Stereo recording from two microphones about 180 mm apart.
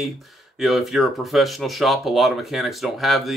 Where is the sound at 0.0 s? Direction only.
Centre (ahead or behind).